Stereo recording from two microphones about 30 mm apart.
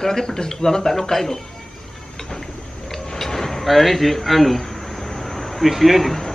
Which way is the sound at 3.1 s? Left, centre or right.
Centre.